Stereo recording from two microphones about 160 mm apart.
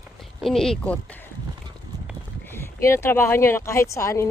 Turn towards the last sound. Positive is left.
turn(degrees=20)  # may be behind; listen again after turning